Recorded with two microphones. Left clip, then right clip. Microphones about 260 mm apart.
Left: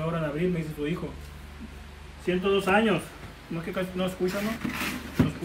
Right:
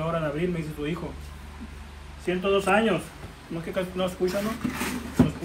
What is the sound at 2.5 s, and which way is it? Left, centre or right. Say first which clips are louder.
A man's voice: right 2 dB; centre.